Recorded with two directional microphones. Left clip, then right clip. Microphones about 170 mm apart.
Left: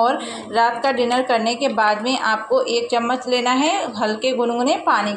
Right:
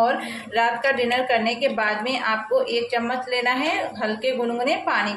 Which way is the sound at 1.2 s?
25° left (ahead or behind).